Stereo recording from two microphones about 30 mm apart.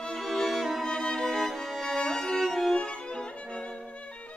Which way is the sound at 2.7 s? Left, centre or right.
Left.